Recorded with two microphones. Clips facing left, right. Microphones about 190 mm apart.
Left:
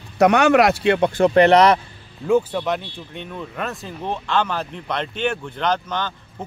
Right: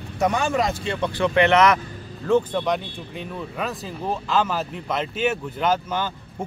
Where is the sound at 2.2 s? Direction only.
10° left (ahead or behind).